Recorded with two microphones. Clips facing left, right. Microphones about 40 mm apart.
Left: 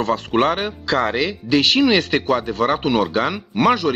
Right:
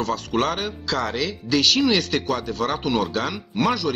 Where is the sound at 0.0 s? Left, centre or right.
Left.